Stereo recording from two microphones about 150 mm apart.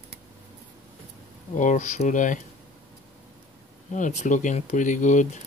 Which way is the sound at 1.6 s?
55° left (ahead or behind).